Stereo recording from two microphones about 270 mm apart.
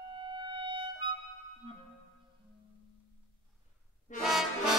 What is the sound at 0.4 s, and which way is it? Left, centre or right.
Music, centre.